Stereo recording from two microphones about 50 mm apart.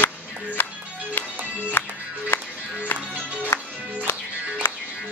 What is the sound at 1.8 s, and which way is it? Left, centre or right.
Music, left.